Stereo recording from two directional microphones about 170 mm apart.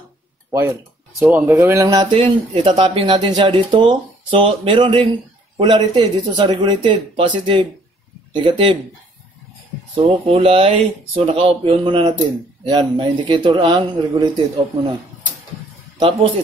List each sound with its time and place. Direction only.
0.5 s speech: 15° right (ahead or behind)
9.9 s speech: 35° right (ahead or behind)
16.0 s speech: 30° right (ahead or behind)